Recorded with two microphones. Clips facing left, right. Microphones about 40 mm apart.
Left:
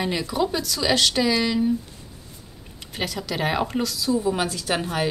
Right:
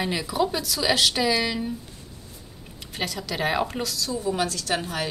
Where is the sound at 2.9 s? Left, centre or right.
Centre.